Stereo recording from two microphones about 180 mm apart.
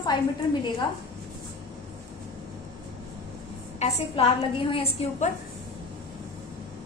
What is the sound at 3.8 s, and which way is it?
A woman's voice, 30° left (ahead or behind).